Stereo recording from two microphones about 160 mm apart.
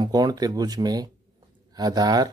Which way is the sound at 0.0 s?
25° right (ahead or behind).